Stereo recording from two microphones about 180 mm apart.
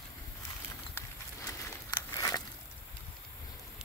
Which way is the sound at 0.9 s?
15° left (ahead or behind).